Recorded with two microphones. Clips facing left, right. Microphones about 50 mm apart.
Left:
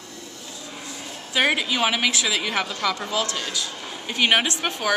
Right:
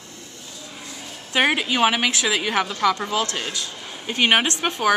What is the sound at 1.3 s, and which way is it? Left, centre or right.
A woman's voice, centre.